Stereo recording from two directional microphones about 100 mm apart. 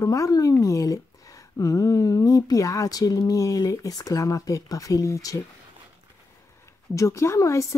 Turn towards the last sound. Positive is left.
turn(degrees=30)  # may be behind; listen again after turning